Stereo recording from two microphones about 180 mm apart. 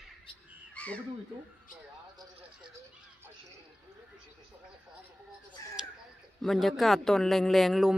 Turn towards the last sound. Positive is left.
turn(degrees=0)  # may be behind; listen again after turning